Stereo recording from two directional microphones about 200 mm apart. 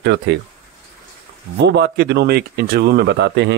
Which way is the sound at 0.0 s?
55° right (ahead or behind).